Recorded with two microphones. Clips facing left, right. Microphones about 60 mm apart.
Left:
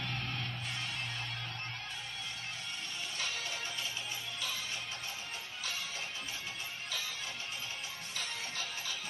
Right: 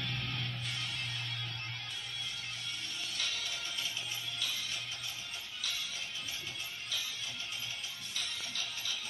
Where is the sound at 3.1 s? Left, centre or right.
Left.